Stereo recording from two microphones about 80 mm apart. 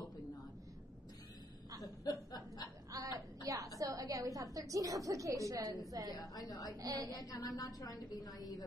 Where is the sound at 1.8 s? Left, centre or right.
Left.